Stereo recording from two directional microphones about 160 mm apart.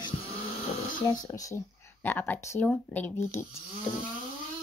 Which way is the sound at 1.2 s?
20° left (ahead or behind).